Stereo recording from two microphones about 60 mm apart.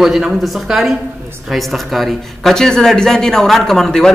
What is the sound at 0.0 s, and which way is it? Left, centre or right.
A man's voice, centre.